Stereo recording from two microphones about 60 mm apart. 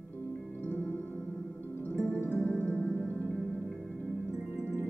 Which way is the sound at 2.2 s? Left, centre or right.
Left.